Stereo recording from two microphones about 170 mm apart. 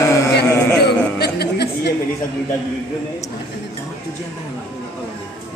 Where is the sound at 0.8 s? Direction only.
75° left (ahead or behind).